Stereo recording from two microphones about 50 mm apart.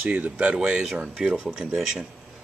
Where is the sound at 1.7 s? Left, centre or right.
Centre.